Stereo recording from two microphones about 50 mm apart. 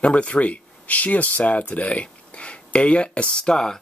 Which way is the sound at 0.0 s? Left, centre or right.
Left.